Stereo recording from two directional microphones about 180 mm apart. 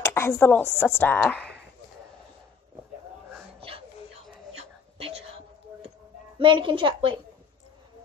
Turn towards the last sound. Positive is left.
turn(degrees=-30)  # may be behind; listen again after turning